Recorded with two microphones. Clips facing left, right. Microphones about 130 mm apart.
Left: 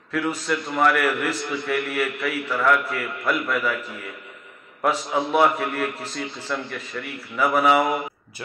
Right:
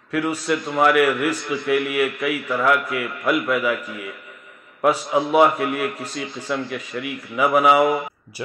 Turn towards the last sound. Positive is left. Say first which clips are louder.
# right 3 dB
turn(degrees=0)  # may be behind; listen again after turning